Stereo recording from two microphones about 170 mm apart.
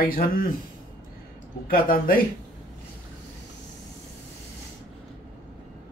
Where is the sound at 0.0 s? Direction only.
55° left (ahead or behind).